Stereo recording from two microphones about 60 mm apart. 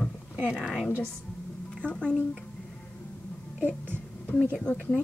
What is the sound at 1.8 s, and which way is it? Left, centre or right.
Speech, centre.